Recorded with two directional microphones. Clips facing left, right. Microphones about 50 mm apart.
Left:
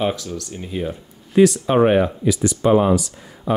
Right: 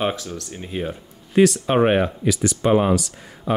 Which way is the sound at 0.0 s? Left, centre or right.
Centre.